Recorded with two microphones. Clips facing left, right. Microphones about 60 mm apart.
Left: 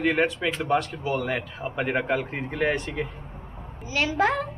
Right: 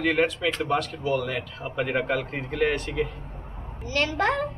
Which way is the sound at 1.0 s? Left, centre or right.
Left.